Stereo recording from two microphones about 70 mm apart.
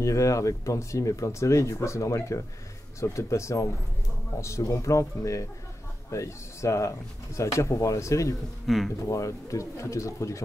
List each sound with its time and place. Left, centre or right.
0.0 s speech: left
8.6 s speech: centre
9.0 s speech: left